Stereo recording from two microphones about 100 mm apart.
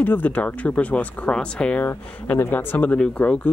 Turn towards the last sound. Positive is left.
turn(degrees=10)  # may be behind; listen again after turning